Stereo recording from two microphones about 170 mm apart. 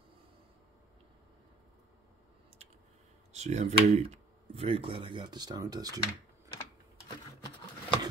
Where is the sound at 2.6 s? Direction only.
40° right (ahead or behind).